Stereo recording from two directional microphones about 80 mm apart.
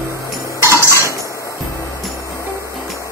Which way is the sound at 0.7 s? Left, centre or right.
Left.